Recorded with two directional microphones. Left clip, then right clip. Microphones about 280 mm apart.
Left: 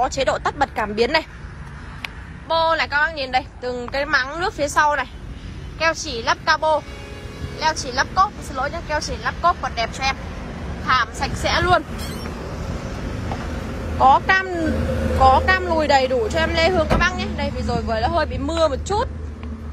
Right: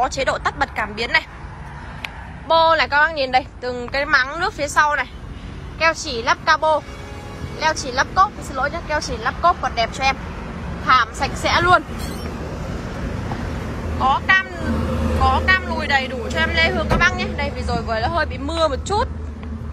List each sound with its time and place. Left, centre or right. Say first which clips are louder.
0.0 s speech: even; centre
2.0 s a woman's voice: even; centre
13.9 s speech: left 2 dB; left
14.9 s vehicle: left 1 dB; centre
15.1 s speech: left 2 dB; left